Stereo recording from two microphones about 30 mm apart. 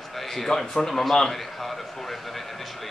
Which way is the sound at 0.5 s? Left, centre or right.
Left.